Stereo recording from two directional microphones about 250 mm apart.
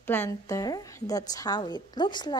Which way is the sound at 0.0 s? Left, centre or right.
Centre.